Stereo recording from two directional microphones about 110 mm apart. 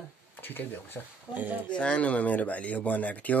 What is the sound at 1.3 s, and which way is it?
Speech, 15° right (ahead or behind).